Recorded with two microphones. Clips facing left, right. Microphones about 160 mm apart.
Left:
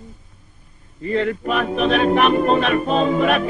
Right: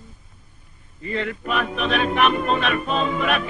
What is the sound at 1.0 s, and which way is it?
A capella, 40° left (ahead or behind).